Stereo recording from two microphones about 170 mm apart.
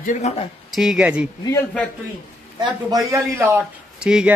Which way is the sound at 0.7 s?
Centre (ahead or behind).